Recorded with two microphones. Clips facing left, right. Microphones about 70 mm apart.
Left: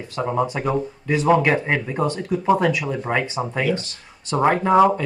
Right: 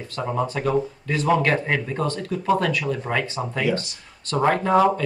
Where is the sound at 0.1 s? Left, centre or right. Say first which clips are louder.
Left 3 dB; centre.